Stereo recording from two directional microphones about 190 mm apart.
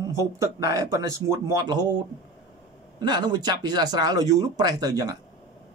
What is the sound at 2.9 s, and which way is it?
Speech, 20° right (ahead or behind).